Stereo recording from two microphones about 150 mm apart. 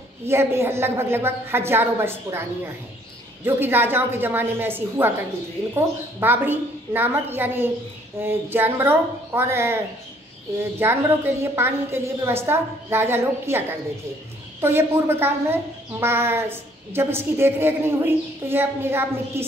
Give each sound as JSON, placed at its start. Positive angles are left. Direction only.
{"t": 0.3, "sound": "a woman's voice", "side_deg": -15}